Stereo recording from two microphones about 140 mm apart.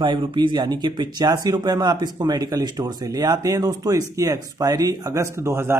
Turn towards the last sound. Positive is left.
turn(degrees=-20)  # may be behind; listen again after turning